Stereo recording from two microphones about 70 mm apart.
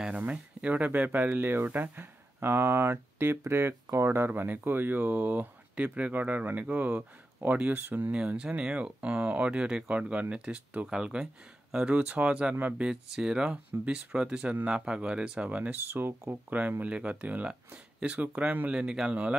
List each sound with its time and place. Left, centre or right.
0.2 s speech: centre
8.1 s speech: centre